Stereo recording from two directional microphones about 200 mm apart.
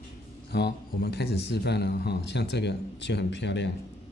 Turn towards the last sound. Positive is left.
turn(degrees=60)  # may be behind; listen again after turning